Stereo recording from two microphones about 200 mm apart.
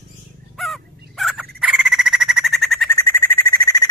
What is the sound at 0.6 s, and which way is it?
Fowl, centre (ahead or behind).